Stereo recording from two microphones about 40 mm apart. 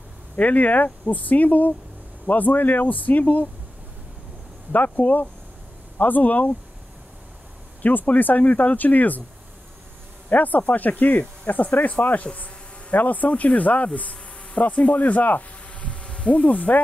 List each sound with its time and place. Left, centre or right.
0.4 s speech: left
4.7 s speech: left
7.8 s speech: left
10.3 s speech: left